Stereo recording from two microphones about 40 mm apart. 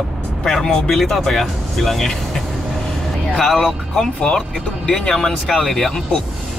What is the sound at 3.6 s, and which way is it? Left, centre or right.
Speech, centre.